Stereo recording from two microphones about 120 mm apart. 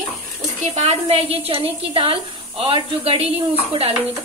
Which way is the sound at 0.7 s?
55° right (ahead or behind).